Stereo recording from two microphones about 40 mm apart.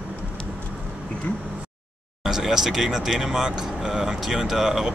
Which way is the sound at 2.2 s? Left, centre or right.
Centre.